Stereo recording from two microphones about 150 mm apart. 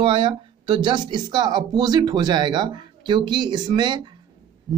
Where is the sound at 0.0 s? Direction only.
35° right (ahead or behind).